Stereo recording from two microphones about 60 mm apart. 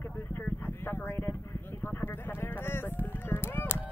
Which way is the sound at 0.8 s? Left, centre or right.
Left.